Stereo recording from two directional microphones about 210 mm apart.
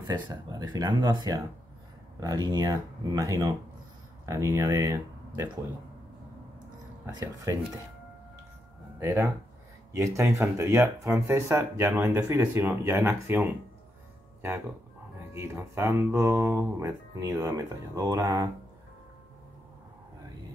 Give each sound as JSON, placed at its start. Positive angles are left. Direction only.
{"t": 0.0, "sound": "speech", "side_deg": -15}
{"t": 7.2, "sound": "speech", "side_deg": -15}
{"t": 9.0, "sound": "speech", "side_deg": -10}
{"t": 15.3, "sound": "speech", "side_deg": -10}